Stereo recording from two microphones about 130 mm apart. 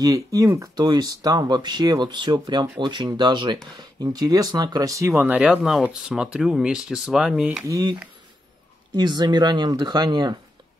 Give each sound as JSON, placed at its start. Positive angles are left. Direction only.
{"t": 0.0, "sound": "speech", "side_deg": -25}
{"t": 7.6, "sound": "speech", "side_deg": -30}